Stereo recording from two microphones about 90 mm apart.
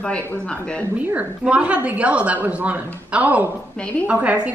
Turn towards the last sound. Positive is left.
turn(degrees=-15)  # may be behind; listen again after turning